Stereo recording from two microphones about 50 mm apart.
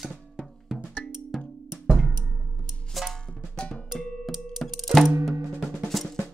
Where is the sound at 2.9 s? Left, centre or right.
Centre.